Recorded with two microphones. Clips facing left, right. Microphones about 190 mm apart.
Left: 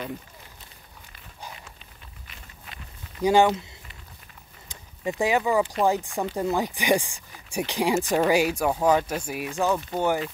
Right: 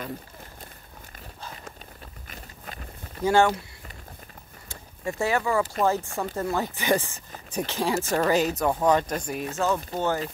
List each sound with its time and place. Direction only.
2.2 s a sound: 45° right (ahead or behind)
3.3 s speech: 15° left (ahead or behind)
4.6 s vehicle: 15° left (ahead or behind)
5.9 s speech: 15° left (ahead or behind)